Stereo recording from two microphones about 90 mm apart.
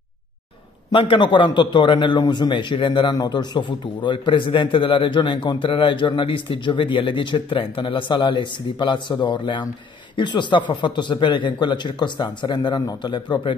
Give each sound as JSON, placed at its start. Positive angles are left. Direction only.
{"t": 0.9, "sound": "a man's voice", "side_deg": 65}
{"t": 3.2, "sound": "a man's voice", "side_deg": 50}